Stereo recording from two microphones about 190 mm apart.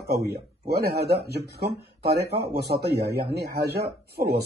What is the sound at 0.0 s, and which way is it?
Speech, 55° right (ahead or behind).